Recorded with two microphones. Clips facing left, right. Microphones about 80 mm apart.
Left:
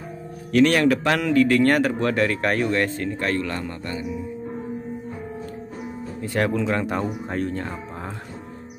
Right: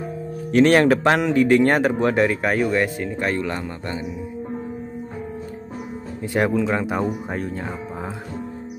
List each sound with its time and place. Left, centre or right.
0.5 s speech: right
2.4 s speech: centre
6.5 s speech: centre